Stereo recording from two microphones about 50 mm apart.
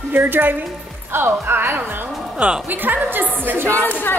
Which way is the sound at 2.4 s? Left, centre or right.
Centre.